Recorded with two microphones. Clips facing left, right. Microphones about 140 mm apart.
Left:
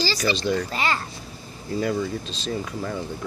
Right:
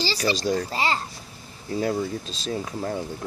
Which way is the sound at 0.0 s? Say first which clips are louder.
Left 1 dB; 30° right (ahead or behind).